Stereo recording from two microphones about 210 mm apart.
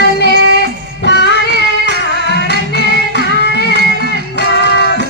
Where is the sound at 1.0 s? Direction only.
55° left (ahead or behind).